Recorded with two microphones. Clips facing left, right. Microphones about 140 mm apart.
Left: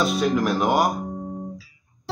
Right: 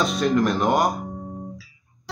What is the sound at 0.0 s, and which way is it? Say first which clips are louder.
Speech: right 1 dB; 5° left (ahead or behind).